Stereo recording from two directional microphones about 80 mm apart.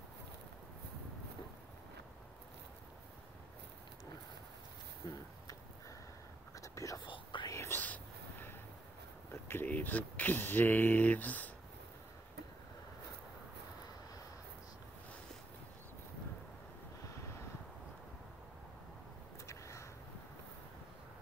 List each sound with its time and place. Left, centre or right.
5.0 s speech: left
6.5 s whispering: left
7.5 s whispering: left
7.8 s vehicle: left
9.3 s speech: left
19.4 s a sound: left